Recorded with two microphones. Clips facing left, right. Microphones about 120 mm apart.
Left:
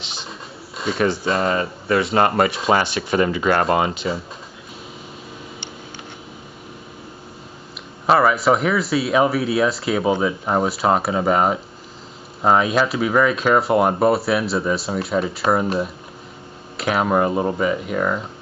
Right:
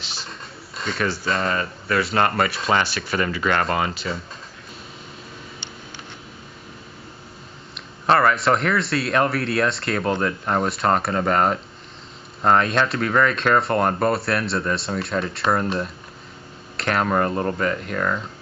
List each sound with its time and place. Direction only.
0.3 s a sound: 5° left (ahead or behind)
0.9 s speech: 20° left (ahead or behind)
8.1 s speech: 5° left (ahead or behind)